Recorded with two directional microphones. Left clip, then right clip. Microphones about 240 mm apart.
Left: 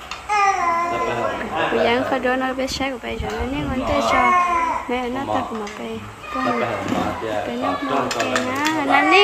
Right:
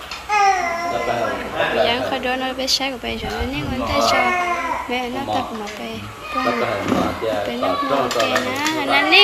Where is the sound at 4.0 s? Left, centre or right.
Centre.